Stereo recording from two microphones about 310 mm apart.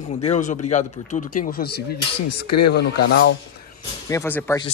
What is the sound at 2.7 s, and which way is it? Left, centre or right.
Speech, left.